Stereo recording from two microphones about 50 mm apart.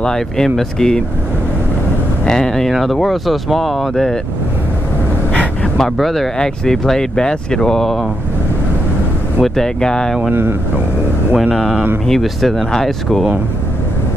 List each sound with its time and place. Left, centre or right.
0.0 s speech: centre
2.2 s speech: centre
2.7 s speech: centre
5.3 s vehicle: left
5.8 s speech: centre
6.3 s speech: centre
9.4 s speech: centre
11.5 s speech: centre